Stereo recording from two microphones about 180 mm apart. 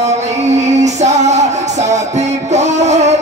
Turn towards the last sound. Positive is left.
turn(degrees=-40)  # may be behind; listen again after turning